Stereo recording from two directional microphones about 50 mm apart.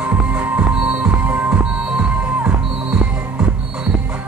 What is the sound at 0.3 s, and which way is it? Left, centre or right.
Music, right.